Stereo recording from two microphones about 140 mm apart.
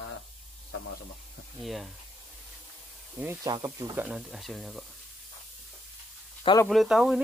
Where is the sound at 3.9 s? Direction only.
10° right (ahead or behind).